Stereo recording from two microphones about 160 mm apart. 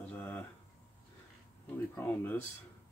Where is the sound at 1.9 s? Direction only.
10° left (ahead or behind).